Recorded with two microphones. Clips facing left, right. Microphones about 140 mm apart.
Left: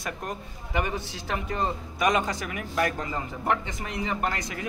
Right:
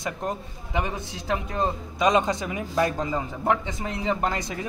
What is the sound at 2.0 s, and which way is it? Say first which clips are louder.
Speech: right 4 dB; 20° right (ahead or behind).